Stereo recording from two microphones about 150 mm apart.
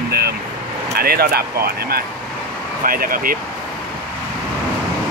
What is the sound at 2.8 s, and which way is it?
Speech, 70° right (ahead or behind).